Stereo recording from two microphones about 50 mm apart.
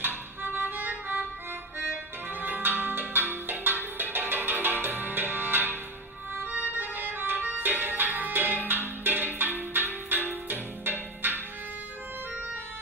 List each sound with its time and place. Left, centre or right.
0.0 s music: right
2.4 s music: right